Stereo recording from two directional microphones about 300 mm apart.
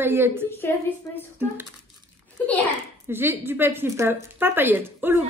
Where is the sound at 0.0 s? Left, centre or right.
Centre.